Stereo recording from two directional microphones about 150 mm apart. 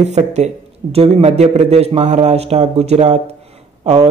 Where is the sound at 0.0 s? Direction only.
50° right (ahead or behind).